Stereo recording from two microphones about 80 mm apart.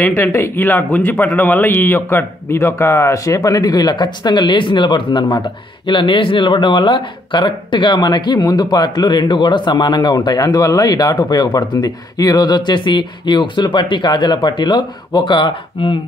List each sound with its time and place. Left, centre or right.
0.0 s a man's voice: left